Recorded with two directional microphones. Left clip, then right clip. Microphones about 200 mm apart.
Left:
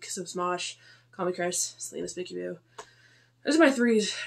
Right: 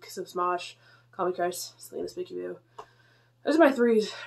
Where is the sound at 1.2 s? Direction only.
15° left (ahead or behind).